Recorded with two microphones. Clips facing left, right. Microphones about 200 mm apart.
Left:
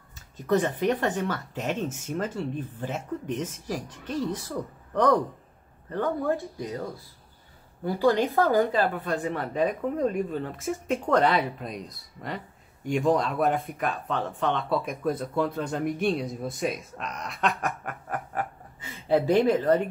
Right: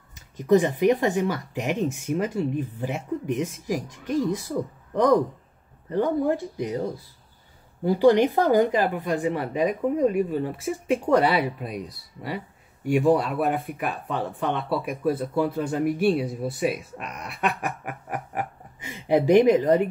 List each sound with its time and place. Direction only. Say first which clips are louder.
0.1 s speech: right 6 dB; 15° right (ahead or behind)